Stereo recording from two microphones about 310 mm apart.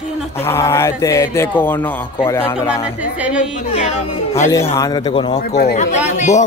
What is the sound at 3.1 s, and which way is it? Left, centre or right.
Speech, centre.